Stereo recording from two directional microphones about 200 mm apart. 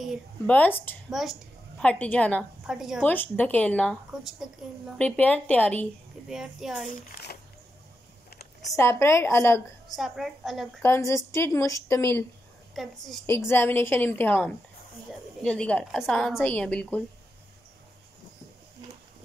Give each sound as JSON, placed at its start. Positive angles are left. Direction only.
{"t": 0.0, "sound": "a woman's voice", "side_deg": 5}
{"t": 1.1, "sound": "a woman's voice", "side_deg": 0}
{"t": 3.0, "sound": "a woman's voice", "side_deg": 10}
{"t": 8.7, "sound": "a woman's voice", "side_deg": 15}
{"t": 9.9, "sound": "a woman's voice", "side_deg": 0}
{"t": 10.8, "sound": "a woman's voice", "side_deg": 15}
{"t": 12.7, "sound": "a woman's voice", "side_deg": 0}
{"t": 13.3, "sound": "a woman's voice", "side_deg": 10}